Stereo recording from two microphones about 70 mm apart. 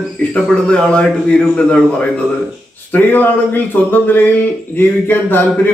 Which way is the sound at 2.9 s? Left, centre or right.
Left.